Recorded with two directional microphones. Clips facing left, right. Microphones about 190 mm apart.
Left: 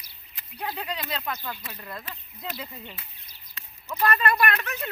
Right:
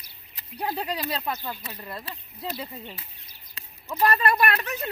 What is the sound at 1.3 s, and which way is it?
Speech, 25° right (ahead or behind).